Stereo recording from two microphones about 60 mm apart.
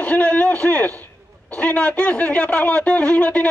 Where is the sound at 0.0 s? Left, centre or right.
Left.